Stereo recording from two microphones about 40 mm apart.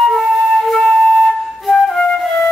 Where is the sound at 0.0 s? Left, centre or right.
Centre.